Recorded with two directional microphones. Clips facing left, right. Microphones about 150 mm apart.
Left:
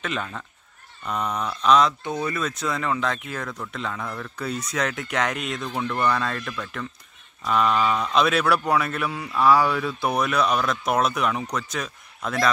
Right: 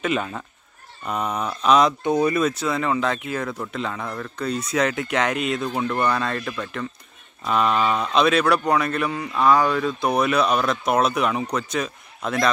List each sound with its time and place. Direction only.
0.0 s speech: 10° right (ahead or behind)
2.6 s speech: 5° right (ahead or behind)
5.7 s speech: 15° right (ahead or behind)
6.0 s speech: centre (ahead or behind)